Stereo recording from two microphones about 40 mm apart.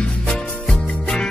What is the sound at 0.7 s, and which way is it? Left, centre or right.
Music, centre.